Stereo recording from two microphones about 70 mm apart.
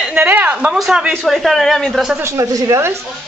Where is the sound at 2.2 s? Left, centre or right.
Right.